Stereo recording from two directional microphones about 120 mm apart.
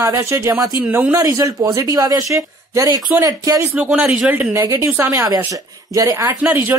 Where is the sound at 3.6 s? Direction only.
10° right (ahead or behind); by 6.3 s 30° right (ahead or behind).